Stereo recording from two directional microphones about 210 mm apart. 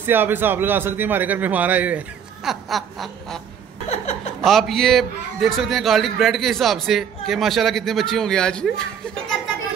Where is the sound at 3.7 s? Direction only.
30° left (ahead or behind).